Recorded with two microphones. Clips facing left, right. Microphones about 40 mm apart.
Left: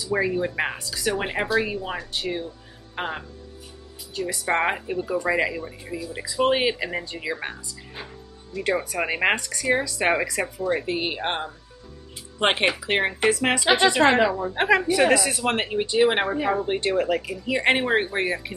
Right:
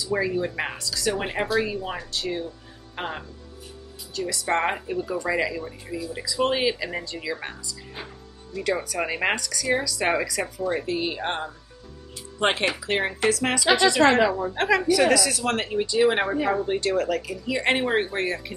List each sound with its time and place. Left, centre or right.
0.1 s speech: centre
0.7 s a woman's voice: left
1.1 s a woman's voice: centre
4.3 s a woman's voice: centre
8.8 s speech: left
10.6 s speech: centre
10.9 s a woman's voice: left
14.2 s speech: centre
14.5 s a woman's voice: centre
16.3 s speech: centre
16.6 s a woman's voice: left